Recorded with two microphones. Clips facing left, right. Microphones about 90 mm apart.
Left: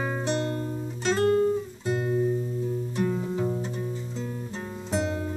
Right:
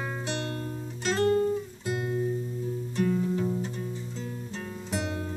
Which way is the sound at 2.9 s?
20° left (ahead or behind).